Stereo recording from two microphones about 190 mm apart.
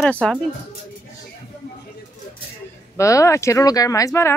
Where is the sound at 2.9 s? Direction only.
15° left (ahead or behind).